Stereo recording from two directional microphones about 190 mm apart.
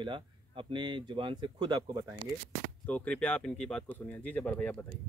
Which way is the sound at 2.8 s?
5° left (ahead or behind).